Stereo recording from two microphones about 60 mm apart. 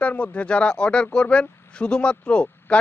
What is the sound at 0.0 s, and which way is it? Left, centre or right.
Speech, left.